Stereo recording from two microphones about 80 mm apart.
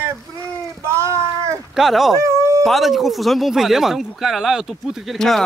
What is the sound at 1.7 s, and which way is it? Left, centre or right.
Speech, centre.